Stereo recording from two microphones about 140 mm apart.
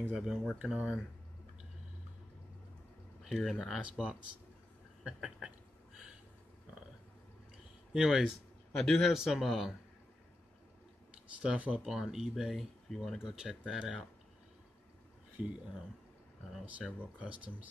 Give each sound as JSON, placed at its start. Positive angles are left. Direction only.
{"t": 0.1, "sound": "speech", "side_deg": 0}
{"t": 3.3, "sound": "speech", "side_deg": 0}
{"t": 7.9, "sound": "speech", "side_deg": -5}
{"t": 11.4, "sound": "speech", "side_deg": -10}
{"t": 15.4, "sound": "speech", "side_deg": -10}